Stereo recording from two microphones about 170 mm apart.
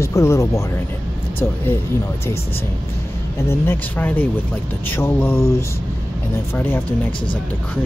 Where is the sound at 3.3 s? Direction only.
15° left (ahead or behind).